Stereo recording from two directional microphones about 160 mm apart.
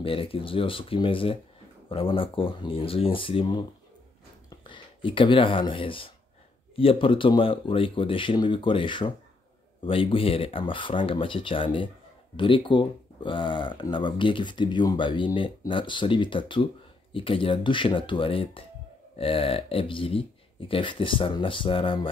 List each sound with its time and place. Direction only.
0.0 s speech: 35° left (ahead or behind)
4.6 s speech: 30° left (ahead or behind)